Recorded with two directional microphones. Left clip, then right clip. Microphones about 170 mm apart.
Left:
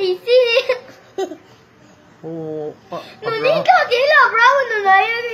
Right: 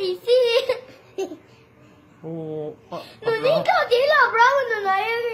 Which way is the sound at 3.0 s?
25° right (ahead or behind).